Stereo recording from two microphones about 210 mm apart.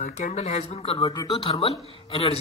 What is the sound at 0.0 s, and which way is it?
A man's voice, 35° left (ahead or behind).